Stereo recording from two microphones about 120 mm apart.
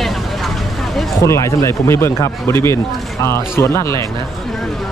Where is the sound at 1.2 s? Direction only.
25° left (ahead or behind).